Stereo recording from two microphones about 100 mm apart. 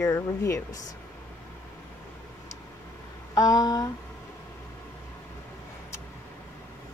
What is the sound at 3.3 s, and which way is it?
Speech, 40° left (ahead or behind).